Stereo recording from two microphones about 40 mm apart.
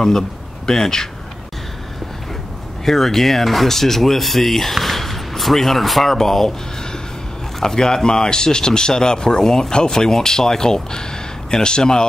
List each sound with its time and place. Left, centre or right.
0.7 s speech: centre
2.8 s speech: centre